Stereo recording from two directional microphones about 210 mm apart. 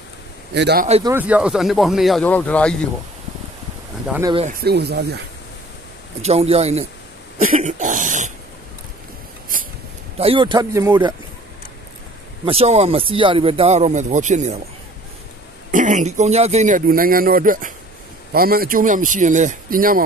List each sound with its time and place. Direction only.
0.6 s speech: 50° right (ahead or behind)
1.0 s speech: 10° right (ahead or behind)
4.5 s speech: 50° right (ahead or behind)
6.2 s speech: 30° right (ahead or behind)
7.3 s cough: 40° right (ahead or behind)
10.1 s speech: 25° right (ahead or behind)
12.4 s speech: 30° right (ahead or behind)
15.7 s speech: 35° right (ahead or behind)